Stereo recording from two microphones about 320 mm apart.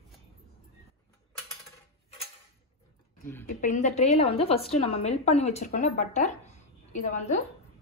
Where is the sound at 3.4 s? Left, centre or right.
Left.